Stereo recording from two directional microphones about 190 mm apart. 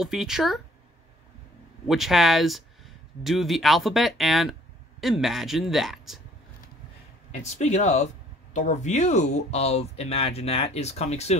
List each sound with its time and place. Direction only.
0.0 s speech: centre (ahead or behind)
1.9 s speech: centre (ahead or behind)
7.4 s speech: 40° left (ahead or behind)